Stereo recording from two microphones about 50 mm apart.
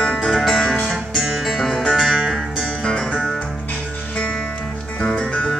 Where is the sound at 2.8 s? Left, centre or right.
Centre.